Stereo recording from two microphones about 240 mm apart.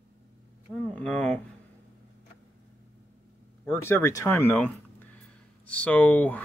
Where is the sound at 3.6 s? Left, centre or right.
Centre.